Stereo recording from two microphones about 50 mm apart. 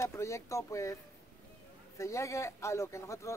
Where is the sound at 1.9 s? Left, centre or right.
Left.